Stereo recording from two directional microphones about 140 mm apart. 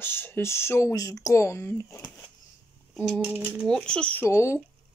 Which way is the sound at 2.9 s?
Centre (ahead or behind).